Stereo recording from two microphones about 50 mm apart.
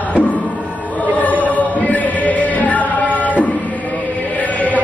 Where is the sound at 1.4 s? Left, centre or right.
Left.